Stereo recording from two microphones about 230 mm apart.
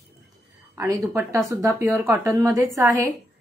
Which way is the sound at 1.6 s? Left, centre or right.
Centre.